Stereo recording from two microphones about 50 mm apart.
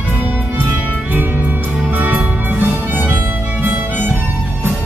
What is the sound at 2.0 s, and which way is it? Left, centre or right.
Music, right.